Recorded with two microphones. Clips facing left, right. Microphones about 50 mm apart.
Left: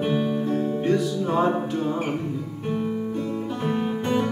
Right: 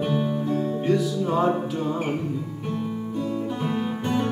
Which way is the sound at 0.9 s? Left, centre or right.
Centre.